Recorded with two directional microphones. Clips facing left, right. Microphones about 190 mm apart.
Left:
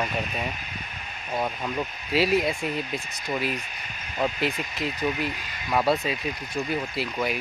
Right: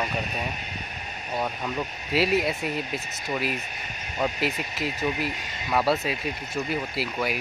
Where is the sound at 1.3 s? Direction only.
5° left (ahead or behind).